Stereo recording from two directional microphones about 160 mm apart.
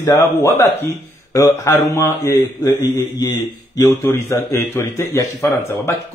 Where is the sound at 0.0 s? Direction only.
15° left (ahead or behind).